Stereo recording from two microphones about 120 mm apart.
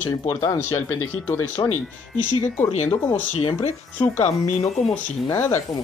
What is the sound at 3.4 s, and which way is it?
Speech, 45° left (ahead or behind).